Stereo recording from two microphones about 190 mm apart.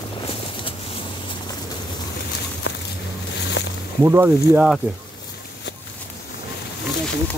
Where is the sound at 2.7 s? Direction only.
65° left (ahead or behind).